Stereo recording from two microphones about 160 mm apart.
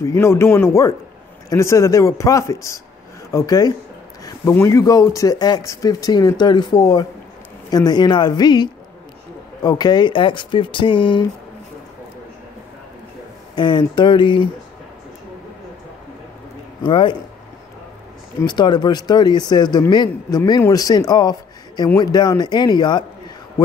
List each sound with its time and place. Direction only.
0.0 s speech: 15° left (ahead or behind); by 11.2 s 30° left (ahead or behind)
13.6 s speech: 30° left (ahead or behind)
16.8 s speech: 30° left (ahead or behind)
18.4 s speech: 25° left (ahead or behind)